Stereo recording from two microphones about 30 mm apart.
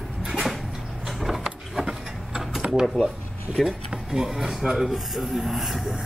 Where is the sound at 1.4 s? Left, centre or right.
Right.